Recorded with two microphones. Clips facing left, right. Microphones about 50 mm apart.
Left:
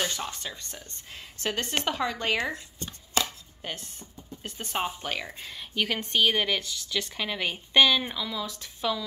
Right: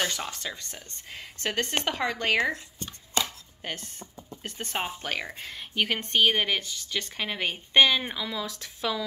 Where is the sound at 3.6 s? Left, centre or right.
Right.